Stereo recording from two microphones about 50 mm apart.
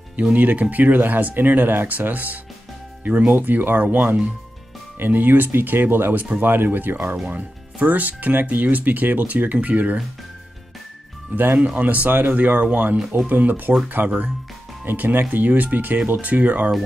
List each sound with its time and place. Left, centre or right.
0.1 s speech: right
7.2 s speech: right
11.3 s speech: right
13.3 s speech: right
14.0 s speech: right
14.9 s speech: right